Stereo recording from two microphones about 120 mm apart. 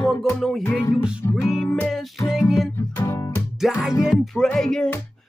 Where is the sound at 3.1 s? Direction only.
25° left (ahead or behind).